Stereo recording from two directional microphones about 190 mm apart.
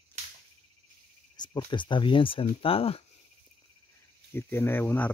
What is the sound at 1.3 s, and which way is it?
Speech, 20° left (ahead or behind).